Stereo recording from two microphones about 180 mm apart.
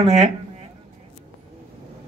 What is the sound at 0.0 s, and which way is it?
Speech, 35° right (ahead or behind).